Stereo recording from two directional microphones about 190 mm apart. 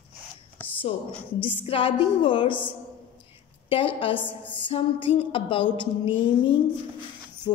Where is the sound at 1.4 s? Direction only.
25° left (ahead or behind).